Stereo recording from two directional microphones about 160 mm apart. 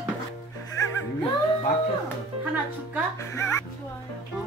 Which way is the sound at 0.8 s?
20° left (ahead or behind).